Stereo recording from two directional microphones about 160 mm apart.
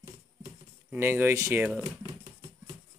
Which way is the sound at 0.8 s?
15° right (ahead or behind).